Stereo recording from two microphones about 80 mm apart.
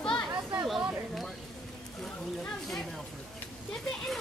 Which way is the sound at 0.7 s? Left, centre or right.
Centre.